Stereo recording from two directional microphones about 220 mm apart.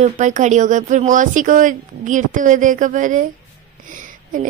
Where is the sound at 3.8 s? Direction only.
35° right (ahead or behind).